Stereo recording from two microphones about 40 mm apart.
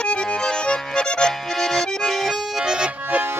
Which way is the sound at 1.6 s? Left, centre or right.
Centre.